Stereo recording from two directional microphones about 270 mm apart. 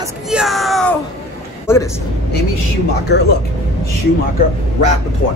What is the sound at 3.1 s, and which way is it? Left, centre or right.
Speech, left.